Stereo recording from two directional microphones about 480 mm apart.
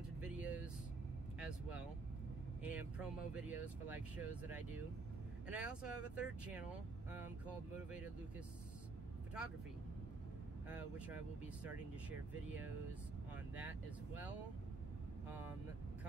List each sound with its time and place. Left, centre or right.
0.2 s vehicle: centre
2.6 s speech: centre
10.7 s speech: centre